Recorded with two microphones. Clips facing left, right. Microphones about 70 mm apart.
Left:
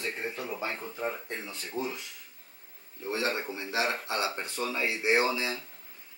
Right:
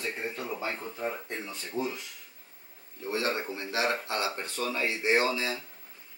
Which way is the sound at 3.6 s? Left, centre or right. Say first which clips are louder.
Right 1 dB; centre.